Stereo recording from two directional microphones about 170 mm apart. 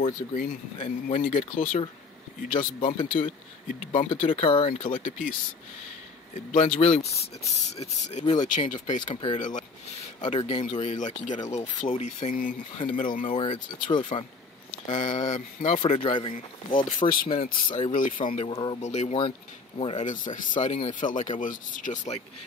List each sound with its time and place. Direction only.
0.0 s speech: 50° left (ahead or behind)
3.9 s speech: 30° left (ahead or behind)
4.2 s speech: 45° left (ahead or behind)
4.5 s speech: 30° left (ahead or behind)
4.7 s speech: 50° left (ahead or behind)
6.5 s speech: 45° left (ahead or behind)
9.4 s speech: 50° left (ahead or behind)
12.7 s speech: 30° left (ahead or behind)
14.9 s speech: 45° left (ahead or behind)
16.0 s speech: 30° left (ahead or behind)
16.7 s speech: 55° left (ahead or behind)
18.5 s speech: 30° left (ahead or behind)
18.8 s speech: 40° left (ahead or behind)